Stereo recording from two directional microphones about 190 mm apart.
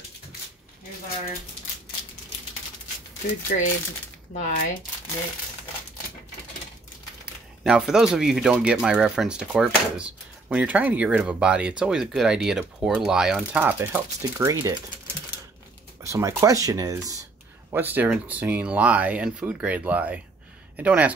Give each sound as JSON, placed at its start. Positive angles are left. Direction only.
{"t": 3.5, "sound": "speech", "side_deg": 55}
{"t": 4.3, "sound": "speech", "side_deg": 40}
{"t": 7.6, "sound": "speech", "side_deg": -5}
{"t": 16.1, "sound": "speech", "side_deg": -15}